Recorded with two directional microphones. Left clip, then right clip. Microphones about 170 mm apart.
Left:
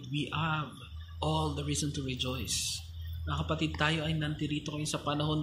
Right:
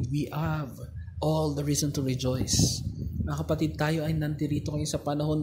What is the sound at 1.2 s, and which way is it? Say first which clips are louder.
Speech: right 5 dB; 15° right (ahead or behind).